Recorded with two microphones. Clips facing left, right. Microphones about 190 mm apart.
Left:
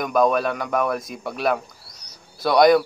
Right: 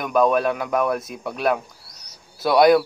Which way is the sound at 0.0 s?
Centre (ahead or behind).